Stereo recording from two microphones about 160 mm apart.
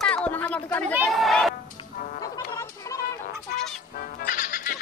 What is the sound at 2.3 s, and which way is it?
Chicken, 20° left (ahead or behind).